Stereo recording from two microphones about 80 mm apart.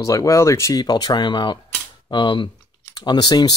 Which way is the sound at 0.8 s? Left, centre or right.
Left.